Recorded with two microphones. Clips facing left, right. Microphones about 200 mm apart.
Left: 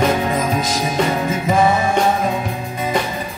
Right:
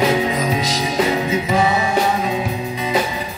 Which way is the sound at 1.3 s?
50° left (ahead or behind).